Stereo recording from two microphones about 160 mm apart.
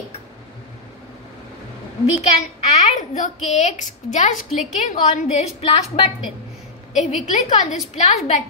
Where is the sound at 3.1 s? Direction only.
50° left (ahead or behind).